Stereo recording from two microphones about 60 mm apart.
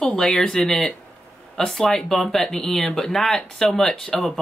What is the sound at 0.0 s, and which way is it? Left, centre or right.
Speech, centre.